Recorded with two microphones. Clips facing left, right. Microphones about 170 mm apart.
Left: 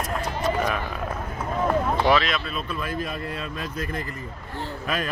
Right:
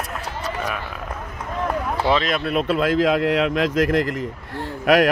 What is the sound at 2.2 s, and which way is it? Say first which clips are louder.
Speech: right 8 dB; 60° right (ahead or behind).